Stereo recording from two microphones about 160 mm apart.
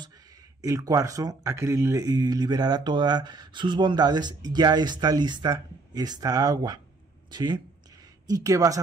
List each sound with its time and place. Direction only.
0.6 s speech: 20° right (ahead or behind)